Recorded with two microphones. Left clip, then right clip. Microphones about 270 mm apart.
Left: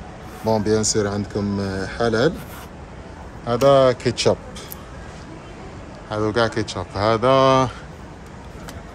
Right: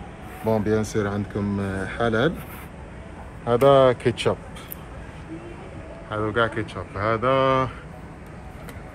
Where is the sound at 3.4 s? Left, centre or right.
Centre.